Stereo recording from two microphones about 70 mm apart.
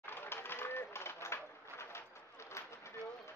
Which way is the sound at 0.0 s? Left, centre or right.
Left.